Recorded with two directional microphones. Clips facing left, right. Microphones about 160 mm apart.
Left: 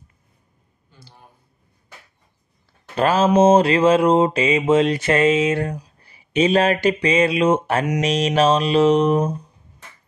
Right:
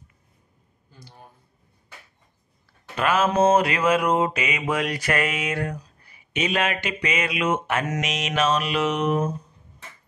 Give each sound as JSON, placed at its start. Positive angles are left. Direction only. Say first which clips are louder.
{"t": 3.0, "sound": "mantra", "louder": "left 5 dB", "side_deg": 30}
{"t": 6.0, "sound": "speech", "louder": "left 9 dB", "side_deg": 30}
{"t": 8.0, "sound": "mantra", "louder": "left 7 dB", "side_deg": 35}